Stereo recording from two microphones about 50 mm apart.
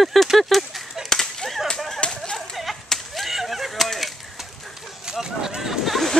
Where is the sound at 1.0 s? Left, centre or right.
Centre.